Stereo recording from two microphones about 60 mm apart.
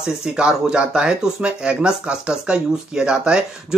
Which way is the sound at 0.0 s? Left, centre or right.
Centre.